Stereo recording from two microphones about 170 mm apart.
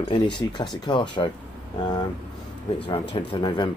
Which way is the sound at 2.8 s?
25° left (ahead or behind).